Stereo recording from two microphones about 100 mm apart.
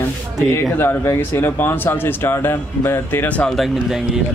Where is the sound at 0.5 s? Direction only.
25° left (ahead or behind).